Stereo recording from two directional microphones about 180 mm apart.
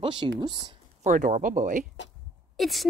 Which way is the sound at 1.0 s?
45° right (ahead or behind).